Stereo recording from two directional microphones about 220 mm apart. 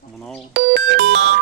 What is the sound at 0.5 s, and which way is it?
Speech, 50° right (ahead or behind).